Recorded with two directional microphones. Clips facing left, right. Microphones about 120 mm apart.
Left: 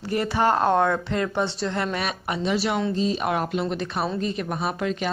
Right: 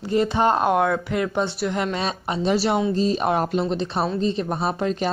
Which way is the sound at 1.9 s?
25° right (ahead or behind).